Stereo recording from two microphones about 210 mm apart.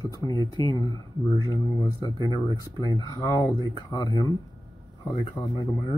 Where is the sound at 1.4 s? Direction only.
15° left (ahead or behind).